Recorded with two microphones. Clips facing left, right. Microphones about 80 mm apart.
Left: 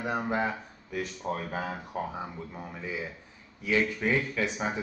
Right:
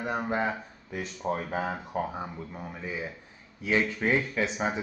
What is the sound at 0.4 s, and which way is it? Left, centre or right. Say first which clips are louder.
Speech: right 1 dB; centre.